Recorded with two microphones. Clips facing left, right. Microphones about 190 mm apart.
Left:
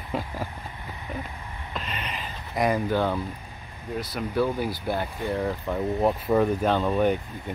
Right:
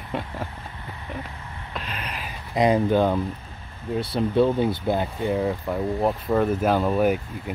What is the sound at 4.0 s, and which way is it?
Speech, 30° right (ahead or behind).